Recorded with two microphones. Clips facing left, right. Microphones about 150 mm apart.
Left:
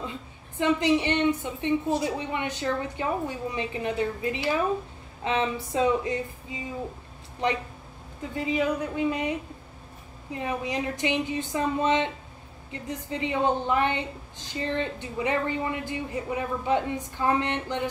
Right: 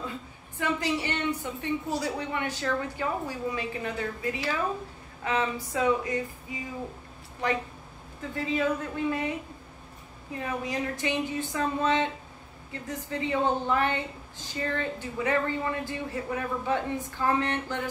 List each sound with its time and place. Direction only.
0.6 s a woman's voice: 20° left (ahead or behind)
8.4 s speech: 15° left (ahead or behind)
10.3 s a woman's voice: 20° left (ahead or behind)